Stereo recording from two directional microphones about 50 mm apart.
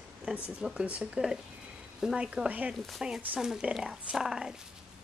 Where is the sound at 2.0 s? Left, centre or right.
Centre.